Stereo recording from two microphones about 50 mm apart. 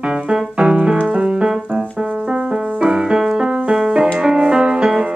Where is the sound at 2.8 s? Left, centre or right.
Centre.